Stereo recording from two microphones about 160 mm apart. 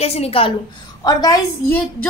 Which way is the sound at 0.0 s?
40° left (ahead or behind).